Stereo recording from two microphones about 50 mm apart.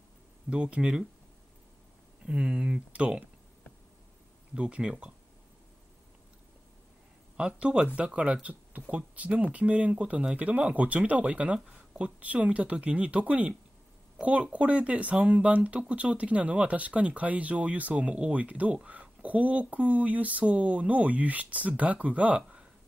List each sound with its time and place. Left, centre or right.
0.5 s speech: right
2.2 s speech: centre
4.6 s speech: right
7.3 s speech: right
11.7 s a sound: centre
12.2 s speech: right